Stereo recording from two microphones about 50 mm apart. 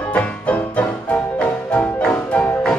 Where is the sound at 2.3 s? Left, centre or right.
Left.